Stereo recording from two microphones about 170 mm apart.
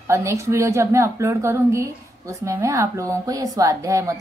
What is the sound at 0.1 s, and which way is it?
A woman's voice, 15° right (ahead or behind).